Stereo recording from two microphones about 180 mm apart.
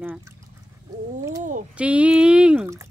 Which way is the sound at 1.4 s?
45° right (ahead or behind).